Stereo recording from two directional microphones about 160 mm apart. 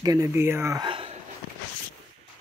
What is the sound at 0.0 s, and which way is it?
Speech, 20° right (ahead or behind).